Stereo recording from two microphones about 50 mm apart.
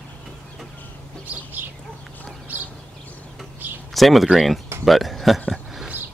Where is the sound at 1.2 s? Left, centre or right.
Right.